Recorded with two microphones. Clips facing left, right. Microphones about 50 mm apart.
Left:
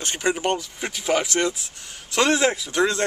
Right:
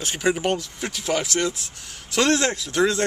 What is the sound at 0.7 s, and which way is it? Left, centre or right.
Speech, centre.